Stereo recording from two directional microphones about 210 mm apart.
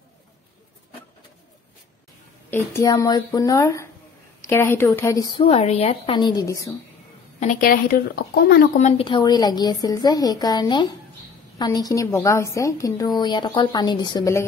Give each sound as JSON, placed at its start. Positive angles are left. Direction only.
{"t": 2.5, "sound": "a woman's voice", "side_deg": 15}
{"t": 7.3, "sound": "a woman's voice", "side_deg": 40}
{"t": 8.7, "sound": "a woman's voice", "side_deg": 30}